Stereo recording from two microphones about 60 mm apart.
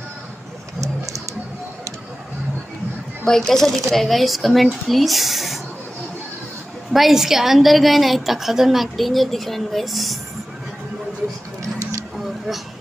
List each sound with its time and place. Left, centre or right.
0.7 s a sound: right
3.3 s a woman's voice: centre
6.9 s a woman's voice: centre